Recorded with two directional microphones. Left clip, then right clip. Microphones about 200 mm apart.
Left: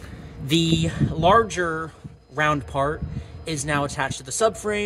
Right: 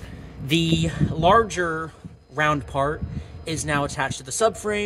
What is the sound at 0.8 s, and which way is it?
Speech, centre (ahead or behind).